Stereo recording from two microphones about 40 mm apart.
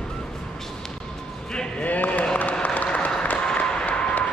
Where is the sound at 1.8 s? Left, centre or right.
Left.